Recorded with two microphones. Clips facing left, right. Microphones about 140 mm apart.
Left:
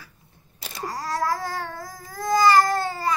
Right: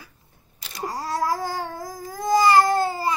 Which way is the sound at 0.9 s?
20° right (ahead or behind).